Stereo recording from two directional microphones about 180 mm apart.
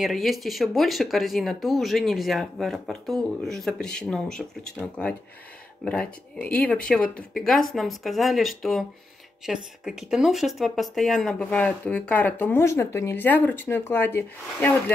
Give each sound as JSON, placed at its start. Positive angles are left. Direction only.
{"t": 0.0, "sound": "speech", "side_deg": 0}